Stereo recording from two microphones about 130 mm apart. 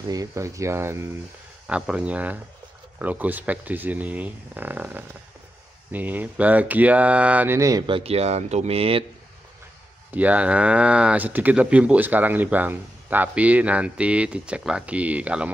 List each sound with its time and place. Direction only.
0.1 s speech: 25° right (ahead or behind)
1.7 s speech: 10° right (ahead or behind); by 7.8 s 25° right (ahead or behind)
7.8 s speech: 45° right (ahead or behind)
10.1 s speech: 10° right (ahead or behind)